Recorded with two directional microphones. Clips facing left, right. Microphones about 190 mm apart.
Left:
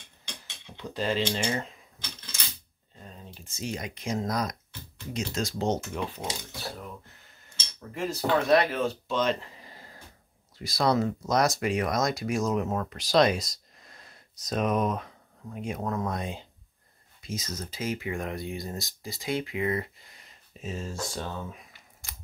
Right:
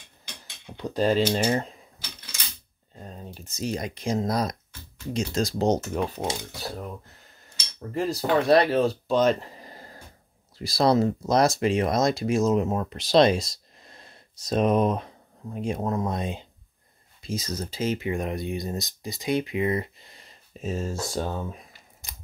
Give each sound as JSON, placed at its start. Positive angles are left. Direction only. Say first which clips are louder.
{"t": 0.7, "sound": "speech", "louder": "right 6 dB", "side_deg": -40}
{"t": 3.0, "sound": "speech", "louder": "right 6 dB", "side_deg": -45}
{"t": 17.2, "sound": "speech", "louder": "right 5 dB", "side_deg": -35}
{"t": 22.0, "sound": "scissors", "louder": "right 1 dB", "side_deg": -20}